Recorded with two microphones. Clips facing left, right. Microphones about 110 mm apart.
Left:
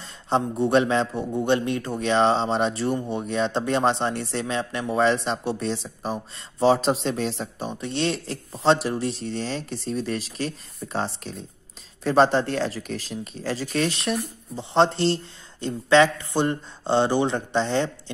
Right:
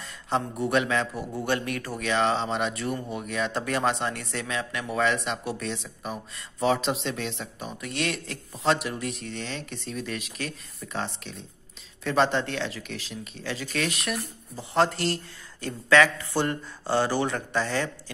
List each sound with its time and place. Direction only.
0.0 s speech: 30° left (ahead or behind)